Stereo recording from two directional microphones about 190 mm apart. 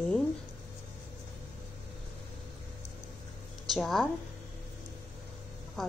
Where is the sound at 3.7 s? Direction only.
Centre (ahead or behind).